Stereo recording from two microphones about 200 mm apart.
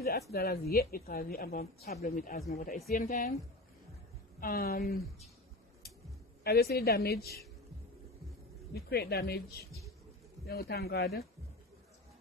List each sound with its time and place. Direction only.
0.3 s a woman's voice: 50° left (ahead or behind)
1.9 s a woman's voice: 40° left (ahead or behind)
4.4 s a woman's voice: 50° left (ahead or behind)
6.4 s a woman's voice: 50° left (ahead or behind)
8.7 s a woman's voice: 50° left (ahead or behind)